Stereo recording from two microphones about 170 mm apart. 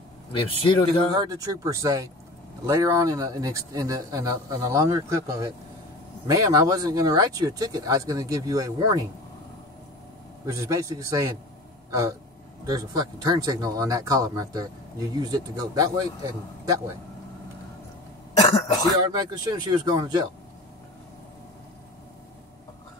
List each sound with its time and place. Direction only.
0.3 s speech: 30° left (ahead or behind)
1.1 s speech: 20° right (ahead or behind)
10.4 s speech: 20° right (ahead or behind)
19.1 s speech: 25° right (ahead or behind)